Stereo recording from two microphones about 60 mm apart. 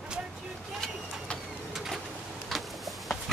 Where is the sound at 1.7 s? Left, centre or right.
Centre.